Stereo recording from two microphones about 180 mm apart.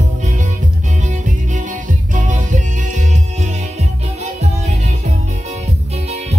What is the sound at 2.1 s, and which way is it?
Music, 45° right (ahead or behind).